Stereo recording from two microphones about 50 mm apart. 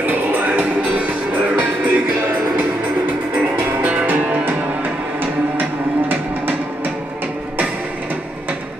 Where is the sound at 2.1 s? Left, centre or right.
Right.